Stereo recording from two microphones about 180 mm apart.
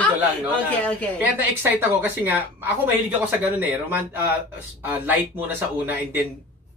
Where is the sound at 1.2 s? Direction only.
10° right (ahead or behind).